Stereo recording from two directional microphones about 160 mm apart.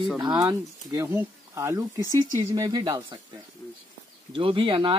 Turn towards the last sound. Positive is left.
turn(degrees=-35)  # may be behind; listen again after turning